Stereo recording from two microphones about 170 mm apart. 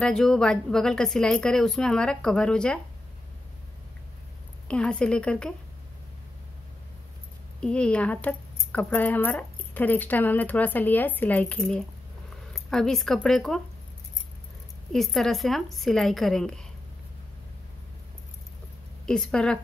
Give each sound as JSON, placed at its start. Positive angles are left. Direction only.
{"t": 0.0, "sound": "a woman's voice", "side_deg": 5}
{"t": 4.6, "sound": "a woman's voice", "side_deg": 5}
{"t": 7.6, "sound": "a woman's voice", "side_deg": 5}
{"t": 14.9, "sound": "a woman's voice", "side_deg": 0}
{"t": 19.0, "sound": "a woman's voice", "side_deg": 5}